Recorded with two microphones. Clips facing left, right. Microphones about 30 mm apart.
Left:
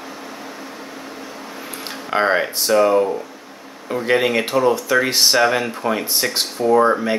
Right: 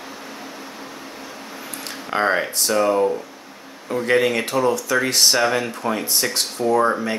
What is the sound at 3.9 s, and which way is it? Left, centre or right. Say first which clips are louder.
Speech: left 1 dB; centre.